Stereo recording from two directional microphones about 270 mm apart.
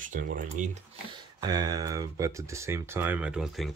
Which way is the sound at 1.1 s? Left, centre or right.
Centre.